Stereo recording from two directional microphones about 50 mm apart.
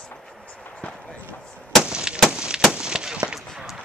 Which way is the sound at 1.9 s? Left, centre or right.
Centre.